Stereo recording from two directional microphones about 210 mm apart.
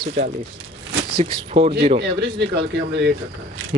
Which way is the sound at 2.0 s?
55° right (ahead or behind).